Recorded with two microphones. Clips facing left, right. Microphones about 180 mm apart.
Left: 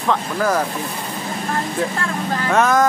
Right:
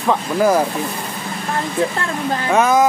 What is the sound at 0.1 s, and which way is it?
Speech, 10° right (ahead or behind).